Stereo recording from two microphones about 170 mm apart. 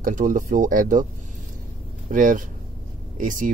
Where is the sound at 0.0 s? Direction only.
50° right (ahead or behind).